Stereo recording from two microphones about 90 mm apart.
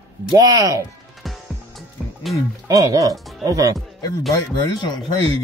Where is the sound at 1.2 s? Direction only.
Centre (ahead or behind).